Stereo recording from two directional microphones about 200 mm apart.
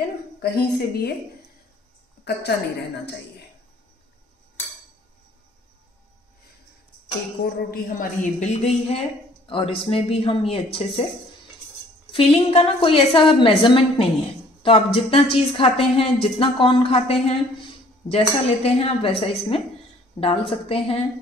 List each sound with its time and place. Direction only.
0.4 s a woman's voice: 50° left (ahead or behind)
7.4 s a woman's voice: 45° left (ahead or behind); by 11.1 s 30° left (ahead or behind)
12.1 s a woman's voice: 30° left (ahead or behind)